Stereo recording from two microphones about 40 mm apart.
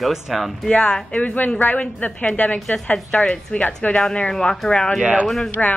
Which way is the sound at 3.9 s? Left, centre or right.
Left.